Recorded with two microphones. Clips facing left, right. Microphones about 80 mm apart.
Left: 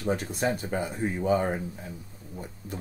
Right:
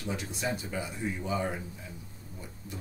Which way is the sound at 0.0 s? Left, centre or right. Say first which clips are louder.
Left 7 dB; left.